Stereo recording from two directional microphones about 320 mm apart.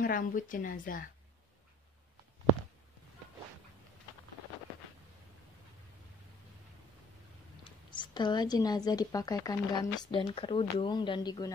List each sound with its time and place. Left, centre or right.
0.0 s a woman's voice: left
7.9 s speech: centre